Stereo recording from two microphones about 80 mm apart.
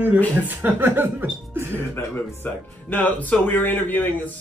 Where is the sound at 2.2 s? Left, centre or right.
Left.